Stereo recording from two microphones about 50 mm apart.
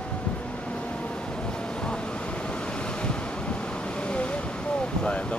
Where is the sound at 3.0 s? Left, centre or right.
Left.